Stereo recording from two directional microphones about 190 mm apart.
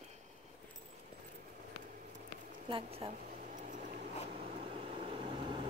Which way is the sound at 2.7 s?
30° right (ahead or behind).